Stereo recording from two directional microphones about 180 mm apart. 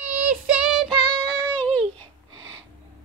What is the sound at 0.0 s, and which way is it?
Child singing, 5° right (ahead or behind).